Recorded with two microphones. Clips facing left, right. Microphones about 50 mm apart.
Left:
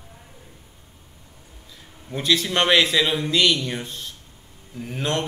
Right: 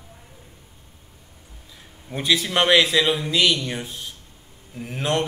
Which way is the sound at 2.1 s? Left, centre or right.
Centre.